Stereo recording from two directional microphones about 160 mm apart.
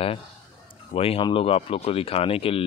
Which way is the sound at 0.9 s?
35° left (ahead or behind).